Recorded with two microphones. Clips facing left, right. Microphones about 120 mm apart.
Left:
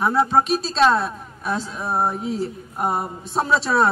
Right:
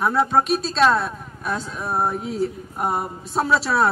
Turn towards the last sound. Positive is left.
turn(degrees=0)  # may be behind; listen again after turning